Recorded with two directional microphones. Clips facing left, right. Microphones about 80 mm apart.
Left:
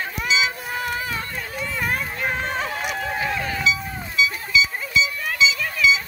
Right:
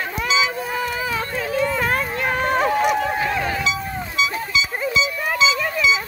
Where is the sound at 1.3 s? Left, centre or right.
Right.